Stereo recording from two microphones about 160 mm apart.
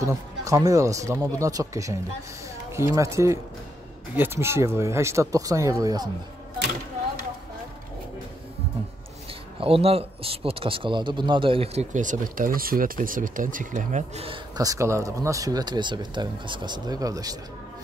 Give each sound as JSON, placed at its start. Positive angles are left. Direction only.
{"t": 0.0, "sound": "speech", "side_deg": -20}
{"t": 9.6, "sound": "speech", "side_deg": -35}
{"t": 14.6, "sound": "speech", "side_deg": -20}